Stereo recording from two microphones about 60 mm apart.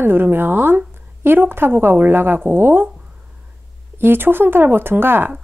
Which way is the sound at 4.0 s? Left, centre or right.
Right.